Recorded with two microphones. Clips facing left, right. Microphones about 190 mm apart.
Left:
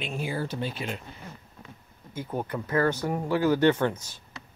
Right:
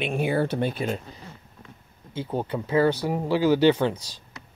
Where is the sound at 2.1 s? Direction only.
25° right (ahead or behind).